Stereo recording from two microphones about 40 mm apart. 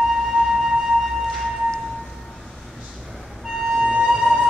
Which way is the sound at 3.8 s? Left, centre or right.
Right.